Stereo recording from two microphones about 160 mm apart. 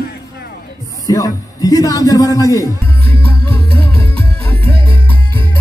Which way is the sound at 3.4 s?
35° right (ahead or behind).